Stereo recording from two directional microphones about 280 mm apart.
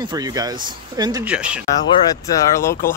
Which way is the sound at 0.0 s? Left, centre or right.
Centre.